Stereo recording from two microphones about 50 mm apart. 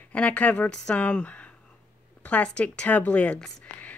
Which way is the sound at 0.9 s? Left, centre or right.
Left.